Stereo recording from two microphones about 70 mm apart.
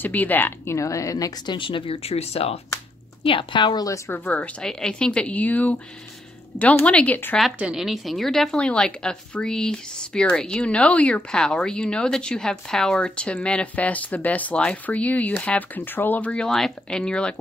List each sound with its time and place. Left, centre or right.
0.0 s a woman's voice: left
0.7 s a woman's voice: left
3.5 s a woman's voice: left
4.1 s a woman's voice: left
4.6 s a woman's voice: centre
7.7 s a woman's voice: centre